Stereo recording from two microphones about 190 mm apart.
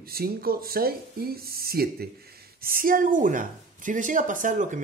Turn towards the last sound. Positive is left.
turn(degrees=-40)  # may be behind; listen again after turning